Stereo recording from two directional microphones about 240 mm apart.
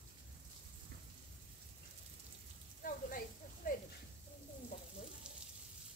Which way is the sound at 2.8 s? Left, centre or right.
Left.